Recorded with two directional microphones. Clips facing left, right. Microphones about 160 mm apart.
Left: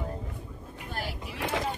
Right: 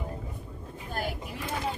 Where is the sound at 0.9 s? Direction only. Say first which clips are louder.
Right 3 dB; 45° right (ahead or behind).